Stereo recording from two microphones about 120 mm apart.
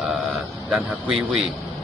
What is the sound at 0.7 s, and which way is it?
Speech, 5° right (ahead or behind).